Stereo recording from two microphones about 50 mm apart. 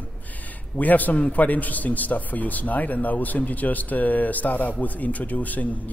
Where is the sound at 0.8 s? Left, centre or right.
Left.